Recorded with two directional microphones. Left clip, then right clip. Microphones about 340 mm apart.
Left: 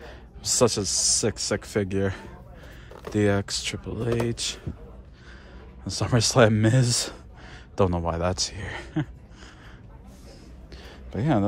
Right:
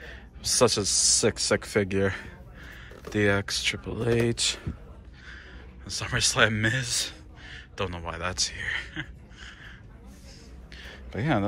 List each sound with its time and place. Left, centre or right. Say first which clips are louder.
0.0 s speech: even; centre
5.9 s a man's voice: left 2 dB; centre
10.7 s a sound: left 1 dB; centre